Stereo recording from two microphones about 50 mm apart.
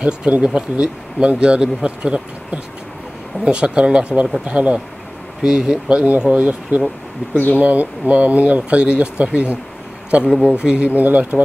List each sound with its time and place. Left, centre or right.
0.0 s speech: right
5.4 s speech: centre
10.2 s speech: centre; by 11.4 s right